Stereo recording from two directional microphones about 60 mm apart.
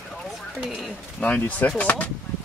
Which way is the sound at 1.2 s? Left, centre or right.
Left.